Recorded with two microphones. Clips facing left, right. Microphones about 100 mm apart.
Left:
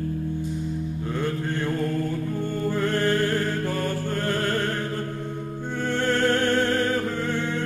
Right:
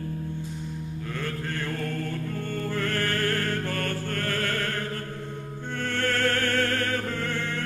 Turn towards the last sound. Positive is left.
turn(degrees=20)  # may be behind; listen again after turning